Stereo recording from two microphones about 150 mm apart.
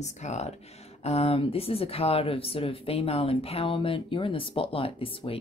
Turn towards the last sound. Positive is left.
turn(degrees=35)  # may be behind; listen again after turning